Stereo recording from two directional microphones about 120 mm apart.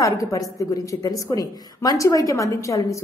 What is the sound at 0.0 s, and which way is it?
A woman's voice, 25° left (ahead or behind).